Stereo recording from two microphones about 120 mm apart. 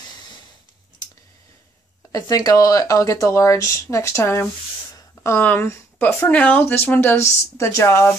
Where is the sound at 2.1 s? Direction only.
30° left (ahead or behind).